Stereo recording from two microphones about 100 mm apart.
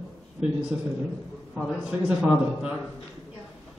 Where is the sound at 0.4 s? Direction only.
10° right (ahead or behind).